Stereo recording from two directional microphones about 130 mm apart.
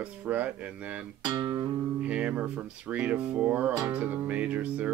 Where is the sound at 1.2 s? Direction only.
30° right (ahead or behind).